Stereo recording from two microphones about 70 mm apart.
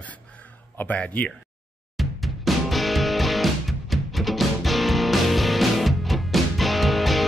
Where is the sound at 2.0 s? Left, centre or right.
Centre.